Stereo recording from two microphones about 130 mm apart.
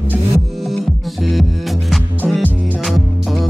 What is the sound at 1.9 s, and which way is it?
Music, centre (ahead or behind).